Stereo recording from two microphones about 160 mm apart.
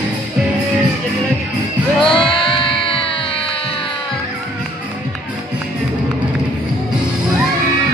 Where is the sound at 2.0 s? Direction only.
30° left (ahead or behind).